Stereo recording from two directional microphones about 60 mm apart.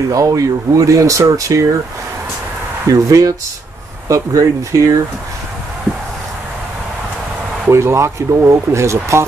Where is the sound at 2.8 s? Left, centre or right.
Right.